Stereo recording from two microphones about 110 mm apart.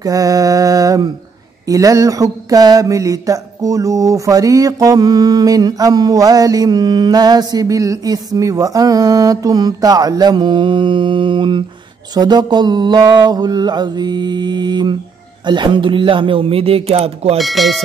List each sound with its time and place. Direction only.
0.0 s a sound: 35° right (ahead or behind)
15.4 s speech: 45° right (ahead or behind); by 17.4 s 65° right (ahead or behind)
17.4 s speech: centre (ahead or behind)